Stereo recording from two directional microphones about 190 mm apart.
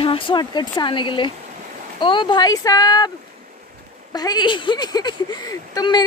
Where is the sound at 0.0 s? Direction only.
25° left (ahead or behind).